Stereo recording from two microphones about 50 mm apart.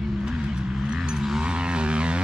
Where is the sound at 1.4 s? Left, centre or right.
Centre.